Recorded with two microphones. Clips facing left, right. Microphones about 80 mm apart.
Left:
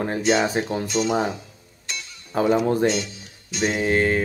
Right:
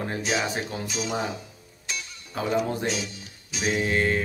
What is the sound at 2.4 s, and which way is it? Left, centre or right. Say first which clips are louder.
Speech: left 7 dB; left.